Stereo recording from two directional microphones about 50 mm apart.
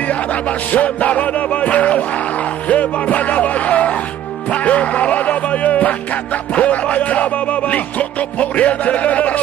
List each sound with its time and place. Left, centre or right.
0.1 s music: left